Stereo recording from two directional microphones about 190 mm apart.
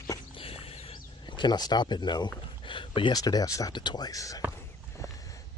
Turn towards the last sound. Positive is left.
turn(degrees=20)  # may be behind; listen again after turning